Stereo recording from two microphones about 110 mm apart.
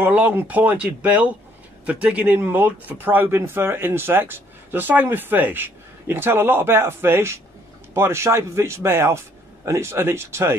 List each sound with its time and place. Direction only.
0.0 s speech: 15° right (ahead or behind)